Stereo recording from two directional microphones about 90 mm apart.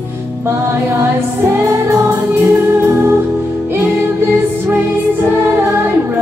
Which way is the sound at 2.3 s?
20° right (ahead or behind).